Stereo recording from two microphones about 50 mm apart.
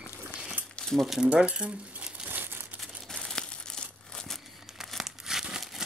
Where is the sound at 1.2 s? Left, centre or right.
Right.